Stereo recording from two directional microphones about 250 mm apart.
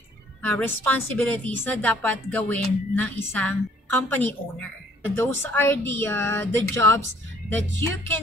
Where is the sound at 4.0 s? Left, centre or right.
Centre.